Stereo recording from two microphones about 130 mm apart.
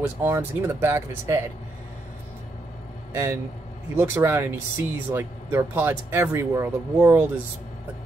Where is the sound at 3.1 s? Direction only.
20° right (ahead or behind).